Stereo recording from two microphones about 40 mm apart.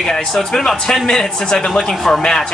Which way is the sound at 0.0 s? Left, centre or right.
Centre.